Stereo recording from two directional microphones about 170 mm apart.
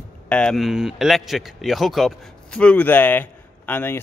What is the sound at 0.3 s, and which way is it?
A man's voice, 5° left (ahead or behind).